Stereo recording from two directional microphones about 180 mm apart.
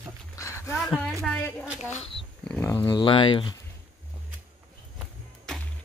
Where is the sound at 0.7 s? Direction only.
5° left (ahead or behind).